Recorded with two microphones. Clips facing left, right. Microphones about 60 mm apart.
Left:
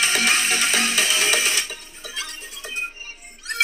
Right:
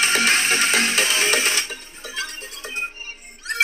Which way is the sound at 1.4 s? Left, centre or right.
Right.